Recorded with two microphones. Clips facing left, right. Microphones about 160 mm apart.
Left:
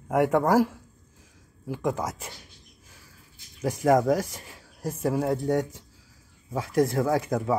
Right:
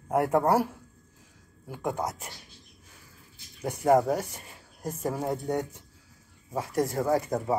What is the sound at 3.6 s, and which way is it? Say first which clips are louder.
Speech: left 2 dB; 90° left.